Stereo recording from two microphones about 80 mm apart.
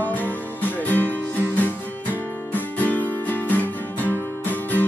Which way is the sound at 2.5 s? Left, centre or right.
Left.